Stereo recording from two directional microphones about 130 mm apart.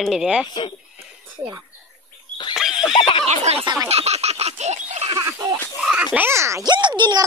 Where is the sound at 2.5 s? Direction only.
5° right (ahead or behind).